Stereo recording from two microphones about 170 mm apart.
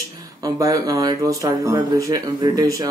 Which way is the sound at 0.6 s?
20° right (ahead or behind).